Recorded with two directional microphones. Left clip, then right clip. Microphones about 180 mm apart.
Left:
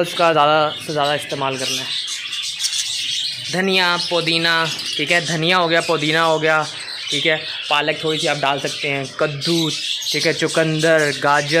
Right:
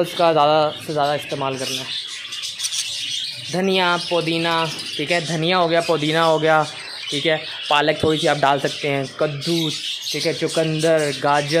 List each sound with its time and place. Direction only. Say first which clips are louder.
0.0 s speech: left 1 dB; 5° right (ahead or behind)
3.5 s speech: left 1 dB; 5° right (ahead or behind)
9.2 s speech: left 4 dB; 5° left (ahead or behind)